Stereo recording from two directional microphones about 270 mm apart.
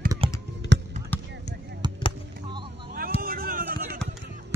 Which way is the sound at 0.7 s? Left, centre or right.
Right.